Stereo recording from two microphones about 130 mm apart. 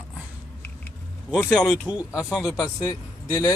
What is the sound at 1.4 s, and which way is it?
Speech, 5° left (ahead or behind).